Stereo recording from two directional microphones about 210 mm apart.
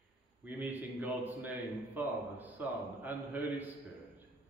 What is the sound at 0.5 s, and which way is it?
A man's voice, 10° right (ahead or behind).